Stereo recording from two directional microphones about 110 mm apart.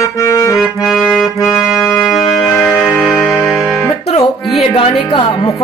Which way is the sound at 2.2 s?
40° left (ahead or behind).